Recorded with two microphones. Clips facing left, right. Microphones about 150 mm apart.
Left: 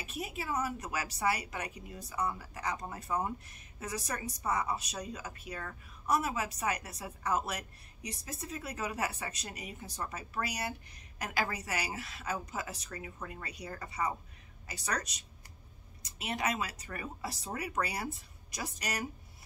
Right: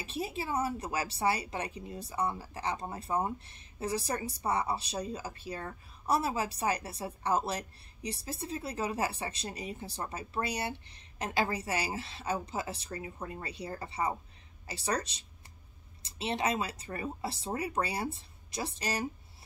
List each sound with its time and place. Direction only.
0.0 s a woman's voice: 30° right (ahead or behind)